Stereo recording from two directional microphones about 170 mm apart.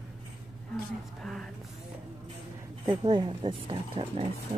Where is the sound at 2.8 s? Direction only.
25° right (ahead or behind).